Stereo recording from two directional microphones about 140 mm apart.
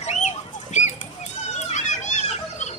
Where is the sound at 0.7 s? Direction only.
60° left (ahead or behind).